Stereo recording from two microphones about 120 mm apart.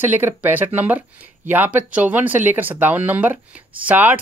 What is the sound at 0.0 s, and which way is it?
Speech, 15° right (ahead or behind).